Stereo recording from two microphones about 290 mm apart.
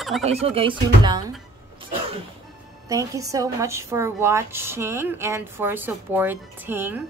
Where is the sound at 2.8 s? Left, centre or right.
Centre.